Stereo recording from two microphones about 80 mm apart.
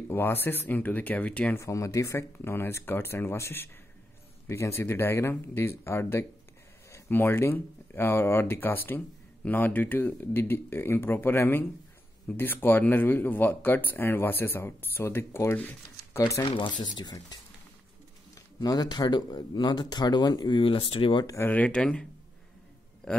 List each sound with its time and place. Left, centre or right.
0.1 s speech: left
1.6 s speech: left
16.4 s speech: left
18.6 s speech: left
21.5 s speech: centre
23.0 s speech: centre